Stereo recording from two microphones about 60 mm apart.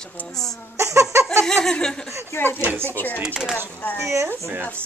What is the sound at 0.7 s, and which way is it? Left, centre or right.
Laughter, right.